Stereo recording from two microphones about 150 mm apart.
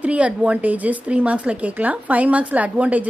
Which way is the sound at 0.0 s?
10° right (ahead or behind).